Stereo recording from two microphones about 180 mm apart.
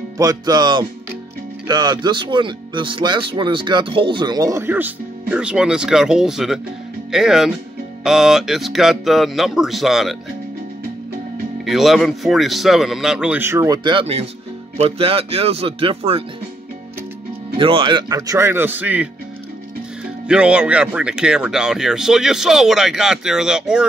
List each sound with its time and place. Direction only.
0.2 s a man's voice: 20° right (ahead or behind); by 10.1 s centre (ahead or behind)
11.6 s a man's voice: centre (ahead or behind)
13.8 s speech: 30° right (ahead or behind)
17.6 s speech: 30° right (ahead or behind); by 19.0 s 10° right (ahead or behind)
20.2 s a man's voice: 5° right (ahead or behind)